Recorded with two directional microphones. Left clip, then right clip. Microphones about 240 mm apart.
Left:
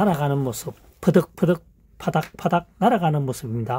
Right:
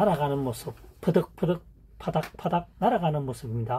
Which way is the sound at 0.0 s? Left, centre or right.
Left.